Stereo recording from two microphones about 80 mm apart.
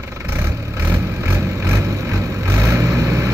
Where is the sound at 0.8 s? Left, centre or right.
Right.